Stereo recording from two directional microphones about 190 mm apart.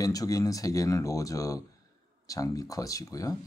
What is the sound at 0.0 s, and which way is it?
Speech, 20° left (ahead or behind).